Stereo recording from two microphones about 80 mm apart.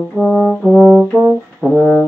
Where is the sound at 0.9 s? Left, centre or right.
Centre.